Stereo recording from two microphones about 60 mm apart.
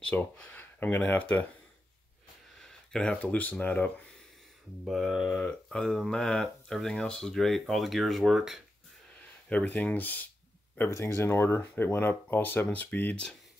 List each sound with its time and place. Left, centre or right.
0.1 s speech: left
2.9 s speech: centre
3.2 s speech: left
4.8 s speech: centre
5.4 s speech: centre
9.5 s speech: left
10.9 s speech: left
13.1 s speech: centre